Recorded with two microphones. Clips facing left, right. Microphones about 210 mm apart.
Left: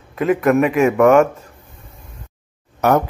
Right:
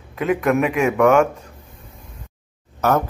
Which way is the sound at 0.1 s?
Centre (ahead or behind).